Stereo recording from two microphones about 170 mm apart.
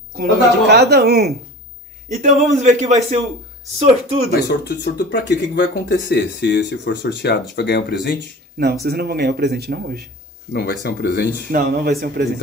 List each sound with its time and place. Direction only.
0.2 s speech: 75° right (ahead or behind)
2.0 s a man's voice: 40° right (ahead or behind)
4.4 s speech: 85° left
8.2 s speech: 70° right (ahead or behind)
10.5 s speech: 65° left (ahead or behind)
11.5 s speech: 60° right (ahead or behind)